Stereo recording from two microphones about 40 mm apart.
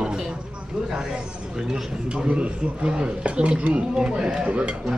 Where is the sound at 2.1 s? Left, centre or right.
Right.